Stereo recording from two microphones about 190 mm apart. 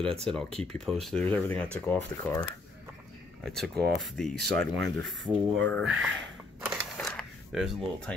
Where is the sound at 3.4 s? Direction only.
Centre (ahead or behind).